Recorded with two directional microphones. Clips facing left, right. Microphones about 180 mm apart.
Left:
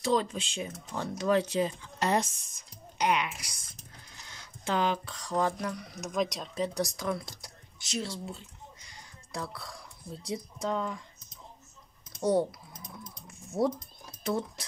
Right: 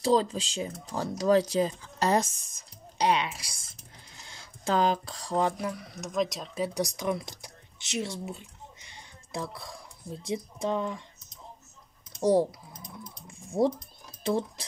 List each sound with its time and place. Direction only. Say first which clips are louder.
0.0 s speech: right 4 dB; 30° right (ahead or behind)
3.0 s speech: right 2 dB; 30° right (ahead or behind)
5.6 s speech: right 1 dB; centre (ahead or behind); by 7.5 s 20° right (ahead or behind)
8.0 s a sound: right 5 dB; 20° right (ahead or behind)
10.2 s speech: right 3 dB; 25° right (ahead or behind)
12.1 s speech: right 3 dB; 30° right (ahead or behind)
13.3 s typing: right 3 dB; 30° right (ahead or behind)
14.2 s speech: right 3 dB; 30° right (ahead or behind)